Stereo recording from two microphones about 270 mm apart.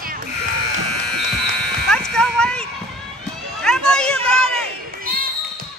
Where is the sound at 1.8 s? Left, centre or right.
Centre.